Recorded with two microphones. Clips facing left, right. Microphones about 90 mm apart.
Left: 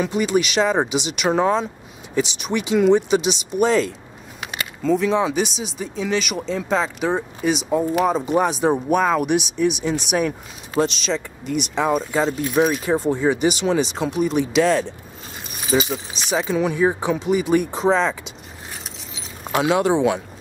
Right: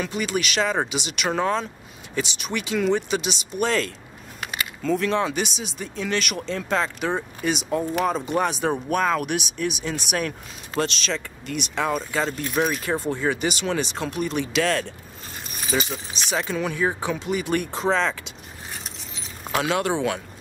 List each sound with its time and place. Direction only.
0.0 s speech: 5° left (ahead or behind)
0.6 s speech: 15° left (ahead or behind)
0.8 s speech: 5° left (ahead or behind)
10.1 s speech: 10° left (ahead or behind)
19.1 s keys jangling: centre (ahead or behind)